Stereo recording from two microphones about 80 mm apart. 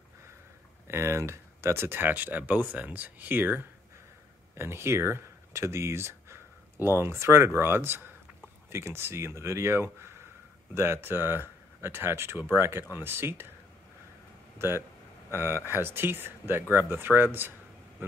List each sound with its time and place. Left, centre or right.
0.8 s speech: right
14.6 s speech: right